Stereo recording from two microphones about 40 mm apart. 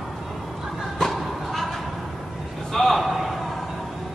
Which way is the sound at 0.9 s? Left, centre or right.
Centre.